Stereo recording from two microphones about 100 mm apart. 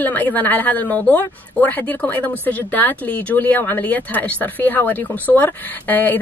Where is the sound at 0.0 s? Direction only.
15° left (ahead or behind).